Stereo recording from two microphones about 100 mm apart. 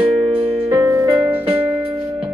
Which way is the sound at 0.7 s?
20° right (ahead or behind).